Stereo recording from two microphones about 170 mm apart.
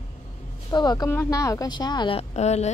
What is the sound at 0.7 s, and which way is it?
A woman's voice, 25° left (ahead or behind).